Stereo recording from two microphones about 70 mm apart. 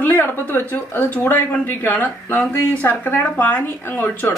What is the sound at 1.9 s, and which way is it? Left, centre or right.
Speech, left.